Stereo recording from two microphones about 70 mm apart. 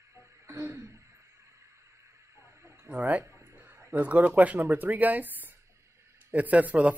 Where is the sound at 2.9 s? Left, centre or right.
Right.